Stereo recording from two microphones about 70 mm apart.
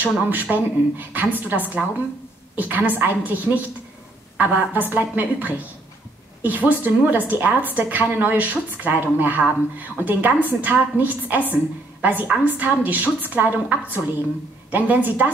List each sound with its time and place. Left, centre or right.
0.0 s a woman's voice: right